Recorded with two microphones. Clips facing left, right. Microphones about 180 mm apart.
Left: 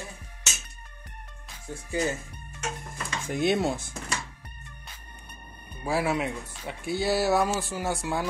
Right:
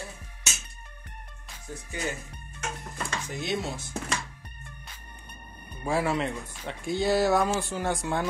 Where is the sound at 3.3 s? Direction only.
60° left (ahead or behind).